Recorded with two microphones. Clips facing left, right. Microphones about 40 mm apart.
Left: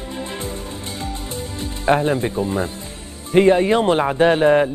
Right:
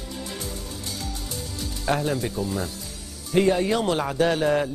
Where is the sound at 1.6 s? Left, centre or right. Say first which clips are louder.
Left 8 dB; left.